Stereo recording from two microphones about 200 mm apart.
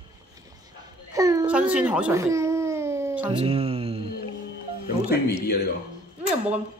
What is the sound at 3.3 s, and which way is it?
Music, 30° right (ahead or behind).